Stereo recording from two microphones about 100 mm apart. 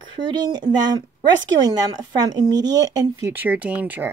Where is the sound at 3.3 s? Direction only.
15° right (ahead or behind).